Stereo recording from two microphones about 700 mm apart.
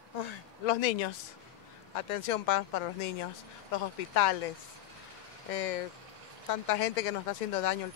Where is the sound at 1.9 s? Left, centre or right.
Left.